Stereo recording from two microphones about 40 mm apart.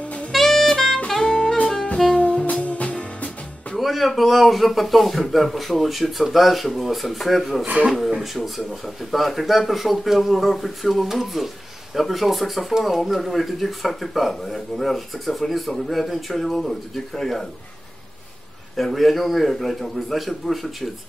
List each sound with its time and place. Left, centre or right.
0.3 s saxophone: centre; by 2.4 s left
2.6 s music: left
3.7 s speech: centre
18.8 s speech: centre